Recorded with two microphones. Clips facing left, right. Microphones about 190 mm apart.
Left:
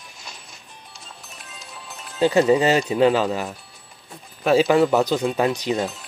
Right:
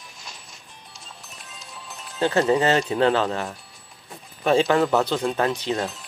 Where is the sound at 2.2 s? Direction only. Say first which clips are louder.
Left 3 dB; 15° left (ahead or behind).